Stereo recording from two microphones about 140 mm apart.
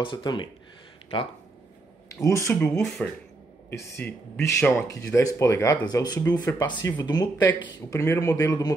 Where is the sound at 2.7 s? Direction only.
Centre (ahead or behind).